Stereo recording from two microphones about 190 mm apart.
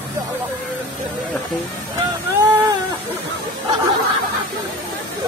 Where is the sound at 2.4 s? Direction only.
20° right (ahead or behind).